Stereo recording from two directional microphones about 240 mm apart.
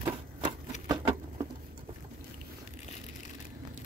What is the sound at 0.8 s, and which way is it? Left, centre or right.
Patter, centre.